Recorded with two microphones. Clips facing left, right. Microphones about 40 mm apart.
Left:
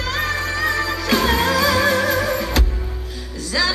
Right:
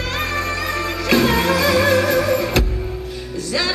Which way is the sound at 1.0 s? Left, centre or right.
Right.